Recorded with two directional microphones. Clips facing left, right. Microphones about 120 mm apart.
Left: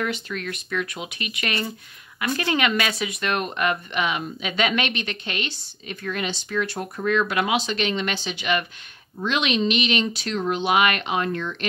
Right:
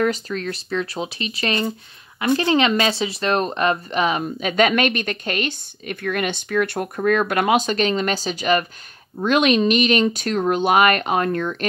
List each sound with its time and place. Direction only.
0.0 s speech: 35° right (ahead or behind)